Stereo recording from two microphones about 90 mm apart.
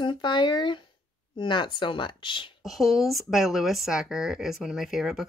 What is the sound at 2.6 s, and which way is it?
A woman's voice, centre (ahead or behind).